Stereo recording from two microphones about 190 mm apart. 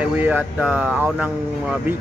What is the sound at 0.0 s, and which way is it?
Speech, 10° right (ahead or behind).